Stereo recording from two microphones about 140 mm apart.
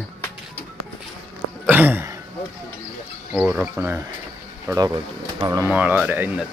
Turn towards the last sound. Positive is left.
turn(degrees=-10)  # may be behind; listen again after turning